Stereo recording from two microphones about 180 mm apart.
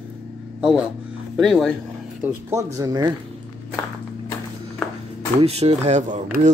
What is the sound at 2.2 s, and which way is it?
Speech, 15° right (ahead or behind).